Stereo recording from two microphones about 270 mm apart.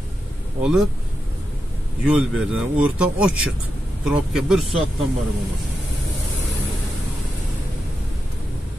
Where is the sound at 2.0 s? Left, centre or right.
Centre.